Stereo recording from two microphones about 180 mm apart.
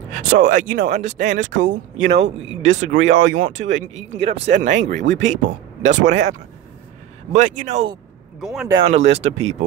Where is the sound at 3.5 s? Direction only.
90° right.